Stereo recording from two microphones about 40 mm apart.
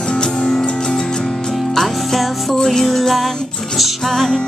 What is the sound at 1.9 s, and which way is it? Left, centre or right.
Music, centre.